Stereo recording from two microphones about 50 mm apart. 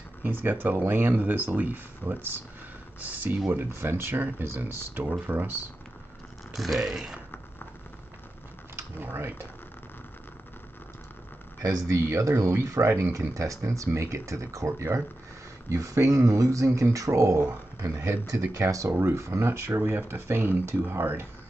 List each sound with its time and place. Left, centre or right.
0.2 s speech: right
3.5 s speech: right
6.5 s speech: centre
9.0 s speech: right
11.6 s speech: right
13.3 s speech: right
17.8 s speech: right
18.5 s speech: right
19.4 s speech: right